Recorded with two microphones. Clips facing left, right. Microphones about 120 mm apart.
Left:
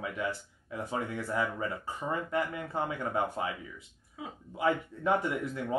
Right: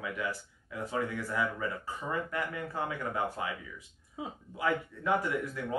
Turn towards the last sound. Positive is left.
turn(degrees=25)  # may be behind; listen again after turning